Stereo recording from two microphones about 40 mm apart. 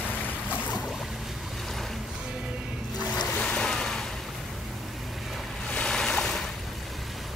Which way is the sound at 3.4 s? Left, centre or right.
Centre.